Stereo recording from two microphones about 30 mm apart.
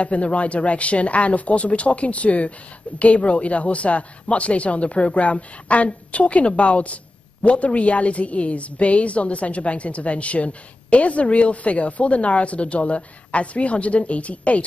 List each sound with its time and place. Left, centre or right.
0.0 s speech: left